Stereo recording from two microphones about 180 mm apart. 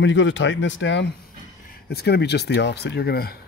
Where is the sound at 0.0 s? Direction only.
90° left.